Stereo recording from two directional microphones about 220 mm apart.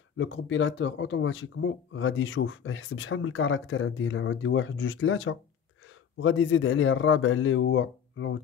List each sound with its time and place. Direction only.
0.2 s speech: 60° left (ahead or behind)